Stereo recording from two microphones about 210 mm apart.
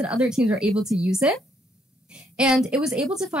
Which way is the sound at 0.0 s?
5° right (ahead or behind).